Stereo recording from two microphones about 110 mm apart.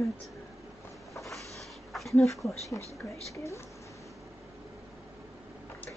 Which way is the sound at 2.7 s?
25° left (ahead or behind).